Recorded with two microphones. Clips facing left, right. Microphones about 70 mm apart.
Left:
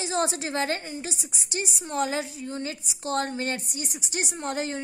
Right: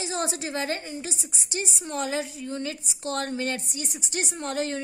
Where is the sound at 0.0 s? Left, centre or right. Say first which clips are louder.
Left 3 dB; left.